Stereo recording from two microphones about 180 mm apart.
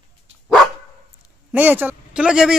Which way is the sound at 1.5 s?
10° right (ahead or behind).